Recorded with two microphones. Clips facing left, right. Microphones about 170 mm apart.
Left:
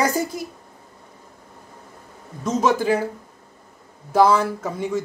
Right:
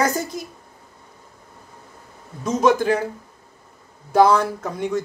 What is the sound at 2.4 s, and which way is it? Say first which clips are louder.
Speech: right 2 dB; centre (ahead or behind).